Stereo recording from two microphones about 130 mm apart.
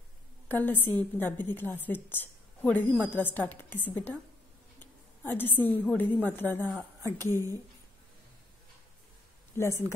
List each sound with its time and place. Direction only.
0.5 s a woman's voice: 15° left (ahead or behind)
9.5 s speech: 20° left (ahead or behind)